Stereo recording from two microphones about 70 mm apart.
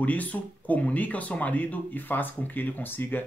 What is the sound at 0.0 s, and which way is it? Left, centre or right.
Speech, left.